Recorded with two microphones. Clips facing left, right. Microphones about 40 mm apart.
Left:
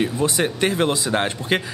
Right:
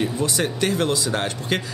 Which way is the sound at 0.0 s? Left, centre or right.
Centre.